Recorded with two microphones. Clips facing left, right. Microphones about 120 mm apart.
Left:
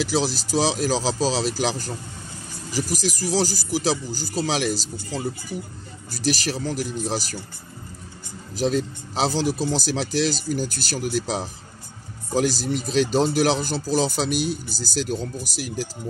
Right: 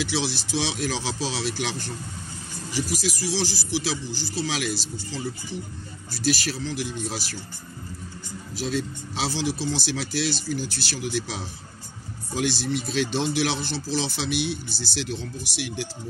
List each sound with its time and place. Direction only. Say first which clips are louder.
0.1 s speech: left 4 dB; 40° left (ahead or behind)
8.7 s speech: left 4 dB; 45° left (ahead or behind)